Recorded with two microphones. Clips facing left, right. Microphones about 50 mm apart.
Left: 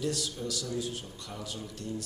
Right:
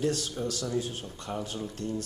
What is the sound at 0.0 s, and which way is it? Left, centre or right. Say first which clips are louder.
Speech: right 4 dB; right.